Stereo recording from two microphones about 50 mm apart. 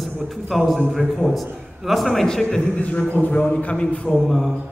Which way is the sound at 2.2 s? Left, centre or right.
Centre.